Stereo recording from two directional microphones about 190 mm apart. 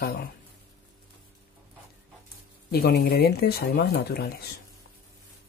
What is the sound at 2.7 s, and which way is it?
Speech, 55° left (ahead or behind).